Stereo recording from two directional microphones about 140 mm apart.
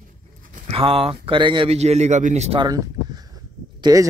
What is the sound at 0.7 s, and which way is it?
Speech, 40° right (ahead or behind).